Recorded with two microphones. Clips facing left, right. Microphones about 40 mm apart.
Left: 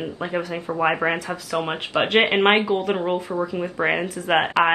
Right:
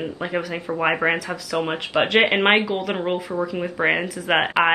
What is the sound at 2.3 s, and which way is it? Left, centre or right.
Speech, centre.